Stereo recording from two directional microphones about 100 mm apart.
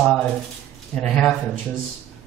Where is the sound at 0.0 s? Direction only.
5° left (ahead or behind).